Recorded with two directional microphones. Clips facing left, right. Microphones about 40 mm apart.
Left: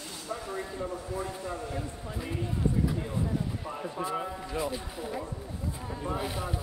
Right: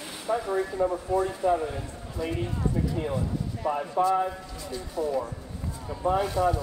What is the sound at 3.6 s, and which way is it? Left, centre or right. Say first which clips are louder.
Speech: right 11 dB; right.